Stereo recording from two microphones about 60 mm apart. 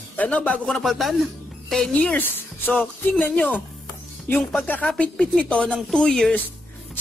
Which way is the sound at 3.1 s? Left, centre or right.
Centre.